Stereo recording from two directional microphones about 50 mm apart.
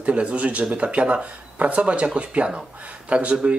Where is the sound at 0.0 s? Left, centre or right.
Right.